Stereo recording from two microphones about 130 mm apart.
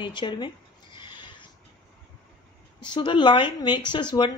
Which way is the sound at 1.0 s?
35° left (ahead or behind).